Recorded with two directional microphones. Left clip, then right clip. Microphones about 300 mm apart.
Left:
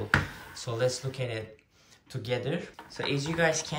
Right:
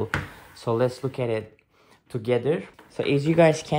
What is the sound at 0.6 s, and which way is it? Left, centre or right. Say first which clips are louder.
Speech: right 6 dB; centre.